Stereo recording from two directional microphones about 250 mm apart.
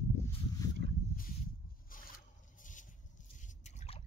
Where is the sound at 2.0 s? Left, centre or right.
Left.